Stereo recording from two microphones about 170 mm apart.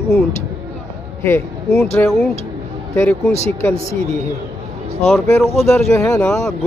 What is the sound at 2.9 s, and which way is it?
Speech, 15° left (ahead or behind).